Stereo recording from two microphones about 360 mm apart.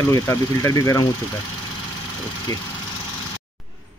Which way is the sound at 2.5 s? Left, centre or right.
Centre.